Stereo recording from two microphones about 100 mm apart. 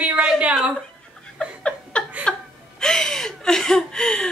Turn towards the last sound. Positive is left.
turn(degrees=10)  # may be behind; listen again after turning